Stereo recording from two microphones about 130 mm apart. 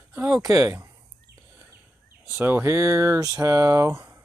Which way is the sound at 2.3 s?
15° right (ahead or behind).